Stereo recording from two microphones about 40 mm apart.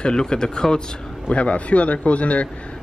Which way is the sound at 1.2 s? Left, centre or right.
Left.